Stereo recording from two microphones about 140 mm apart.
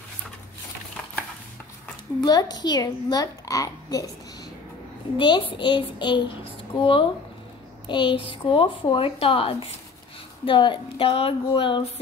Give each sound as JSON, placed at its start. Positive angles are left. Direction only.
{"t": 2.2, "sound": "a child's voice", "side_deg": 30}
{"t": 5.1, "sound": "speech", "side_deg": 35}
{"t": 7.8, "sound": "a sound", "side_deg": 35}
{"t": 8.3, "sound": "speech", "side_deg": 35}